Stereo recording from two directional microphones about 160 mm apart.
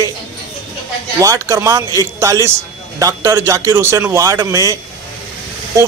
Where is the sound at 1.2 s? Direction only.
20° right (ahead or behind).